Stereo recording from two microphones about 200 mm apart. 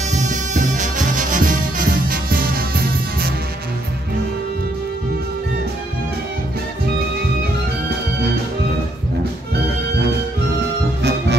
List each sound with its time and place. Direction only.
0.1 s music: 40° right (ahead or behind)
11.0 s music: 60° right (ahead or behind)